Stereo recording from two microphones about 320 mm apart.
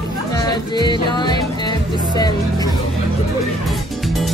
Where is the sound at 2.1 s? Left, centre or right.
Centre.